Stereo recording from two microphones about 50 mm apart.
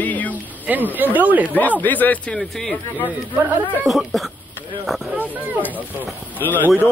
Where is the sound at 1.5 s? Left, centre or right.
Left.